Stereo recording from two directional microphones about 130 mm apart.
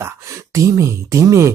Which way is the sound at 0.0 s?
25° right (ahead or behind).